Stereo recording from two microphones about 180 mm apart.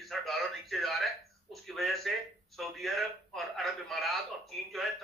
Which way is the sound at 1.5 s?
Centre (ahead or behind).